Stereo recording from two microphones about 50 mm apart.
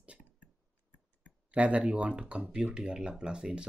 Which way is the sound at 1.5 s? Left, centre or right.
Right.